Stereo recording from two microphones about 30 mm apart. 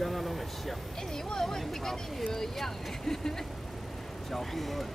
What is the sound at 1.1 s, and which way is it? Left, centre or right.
Vehicle, centre.